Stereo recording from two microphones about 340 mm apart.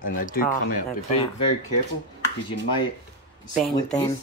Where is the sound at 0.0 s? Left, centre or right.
Left.